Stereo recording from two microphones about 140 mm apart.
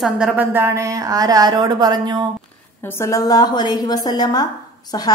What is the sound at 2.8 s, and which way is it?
A woman's voice, 20° left (ahead or behind).